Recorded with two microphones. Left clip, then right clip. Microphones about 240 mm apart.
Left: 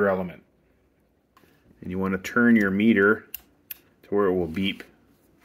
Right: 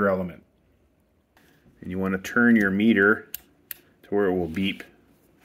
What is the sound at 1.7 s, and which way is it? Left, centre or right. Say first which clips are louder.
Speech: even; centre.